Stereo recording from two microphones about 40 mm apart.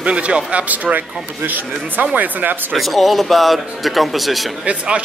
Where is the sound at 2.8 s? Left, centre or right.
Centre.